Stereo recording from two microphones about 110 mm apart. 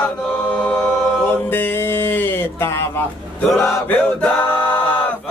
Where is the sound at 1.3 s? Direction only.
20° left (ahead or behind).